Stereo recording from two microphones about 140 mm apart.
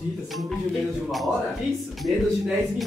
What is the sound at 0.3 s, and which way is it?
Speech, centre (ahead or behind).